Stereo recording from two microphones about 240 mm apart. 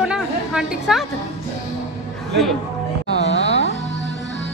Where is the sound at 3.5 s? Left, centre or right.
Left.